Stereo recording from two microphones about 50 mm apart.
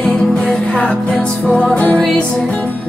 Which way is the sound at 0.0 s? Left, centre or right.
Centre.